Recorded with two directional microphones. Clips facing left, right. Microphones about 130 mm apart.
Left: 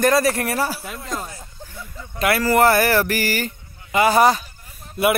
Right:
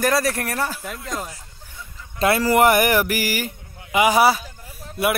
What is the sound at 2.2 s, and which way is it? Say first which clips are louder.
Speech: even; 25° right (ahead or behind).